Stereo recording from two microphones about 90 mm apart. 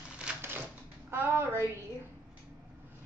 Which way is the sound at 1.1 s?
25° right (ahead or behind).